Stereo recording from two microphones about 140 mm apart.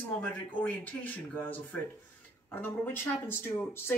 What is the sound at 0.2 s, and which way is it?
Speech, 10° left (ahead or behind).